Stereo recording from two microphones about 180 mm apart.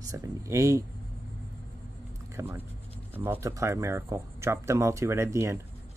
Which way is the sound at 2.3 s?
15° right (ahead or behind).